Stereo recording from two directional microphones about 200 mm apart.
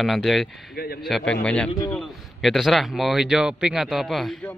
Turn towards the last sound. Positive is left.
turn(degrees=0)  # may be behind; listen again after turning